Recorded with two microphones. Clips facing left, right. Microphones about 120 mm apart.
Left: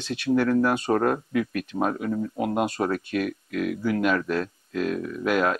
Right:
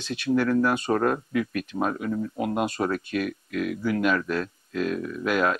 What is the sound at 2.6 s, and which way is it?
Speech, 40° left (ahead or behind).